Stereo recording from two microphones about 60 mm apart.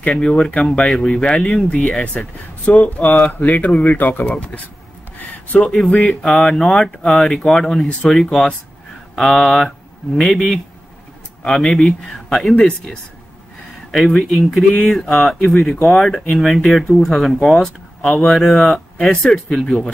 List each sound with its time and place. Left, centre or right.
0.1 s speech: centre
1.8 s speech: left
5.8 s speech: centre
14.1 s speech: centre